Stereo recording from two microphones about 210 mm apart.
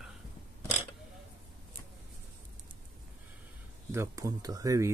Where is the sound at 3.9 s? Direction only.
15° right (ahead or behind).